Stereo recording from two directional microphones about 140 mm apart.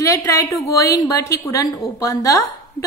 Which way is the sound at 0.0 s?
20° left (ahead or behind).